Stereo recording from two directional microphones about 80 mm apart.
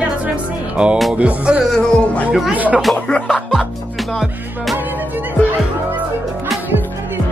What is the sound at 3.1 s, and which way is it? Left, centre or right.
Music, centre.